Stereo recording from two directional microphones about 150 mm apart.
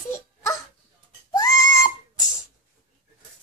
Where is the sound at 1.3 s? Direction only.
25° left (ahead or behind).